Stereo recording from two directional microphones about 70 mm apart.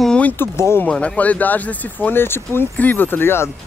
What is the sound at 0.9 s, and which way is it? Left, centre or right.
Speech, centre.